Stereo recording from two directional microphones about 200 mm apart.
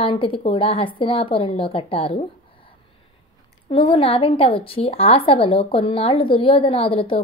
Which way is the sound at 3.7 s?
25° left (ahead or behind).